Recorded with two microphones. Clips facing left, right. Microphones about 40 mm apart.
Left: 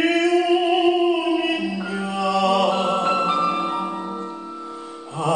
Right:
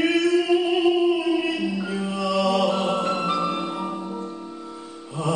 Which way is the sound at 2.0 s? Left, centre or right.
Left.